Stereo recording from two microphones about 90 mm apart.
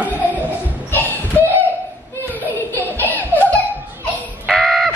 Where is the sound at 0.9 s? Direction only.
20° left (ahead or behind).